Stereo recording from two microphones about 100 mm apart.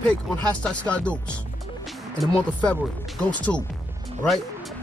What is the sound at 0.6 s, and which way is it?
Speech, 10° left (ahead or behind).